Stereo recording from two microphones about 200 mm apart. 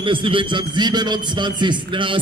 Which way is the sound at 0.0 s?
25° right (ahead or behind).